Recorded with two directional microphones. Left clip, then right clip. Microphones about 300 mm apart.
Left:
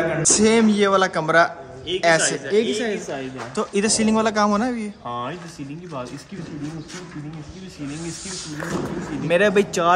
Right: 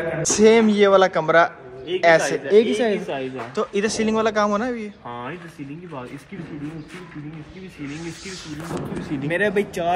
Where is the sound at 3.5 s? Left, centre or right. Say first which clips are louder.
Left 1 dB; centre.